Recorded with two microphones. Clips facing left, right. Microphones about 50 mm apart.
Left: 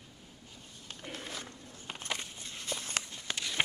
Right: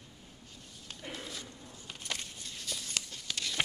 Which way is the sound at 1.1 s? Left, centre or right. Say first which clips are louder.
Left 1 dB; left.